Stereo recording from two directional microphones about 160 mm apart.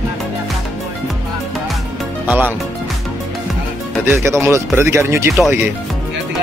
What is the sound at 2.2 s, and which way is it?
Speech, 10° right (ahead or behind).